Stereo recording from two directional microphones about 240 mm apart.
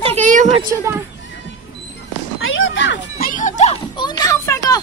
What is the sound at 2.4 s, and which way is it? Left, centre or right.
Music, left.